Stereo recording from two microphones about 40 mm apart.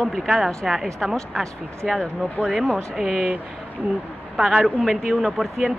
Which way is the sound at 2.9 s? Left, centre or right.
Centre.